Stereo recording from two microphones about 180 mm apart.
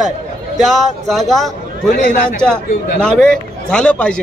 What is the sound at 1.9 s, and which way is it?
Speech, 50° left (ahead or behind).